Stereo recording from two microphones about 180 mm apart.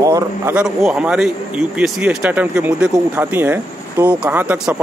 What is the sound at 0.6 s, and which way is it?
Speech, 5° right (ahead or behind).